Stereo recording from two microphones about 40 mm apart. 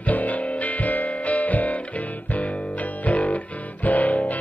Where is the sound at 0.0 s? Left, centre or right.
Left.